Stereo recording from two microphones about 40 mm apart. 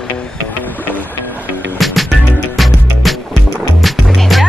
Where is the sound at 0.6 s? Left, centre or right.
Left.